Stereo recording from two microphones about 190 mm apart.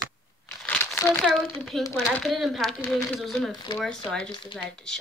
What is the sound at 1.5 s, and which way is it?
Speech, 5° left (ahead or behind).